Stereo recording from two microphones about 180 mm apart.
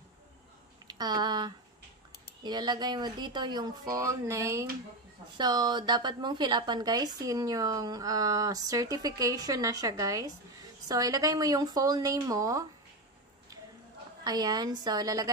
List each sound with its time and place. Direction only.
0.8 s a woman's voice: 25° right (ahead or behind)
14.2 s a woman's voice: 20° right (ahead or behind)